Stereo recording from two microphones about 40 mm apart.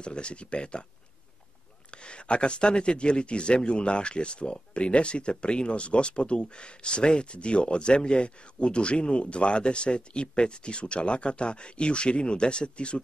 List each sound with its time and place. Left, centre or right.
0.0 s speech: left
1.9 s speech: left